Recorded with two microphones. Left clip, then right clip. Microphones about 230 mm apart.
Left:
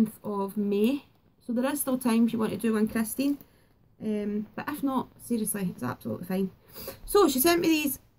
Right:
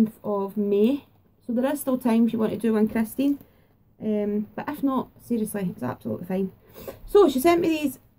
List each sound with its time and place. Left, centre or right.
0.0 s a woman's voice: centre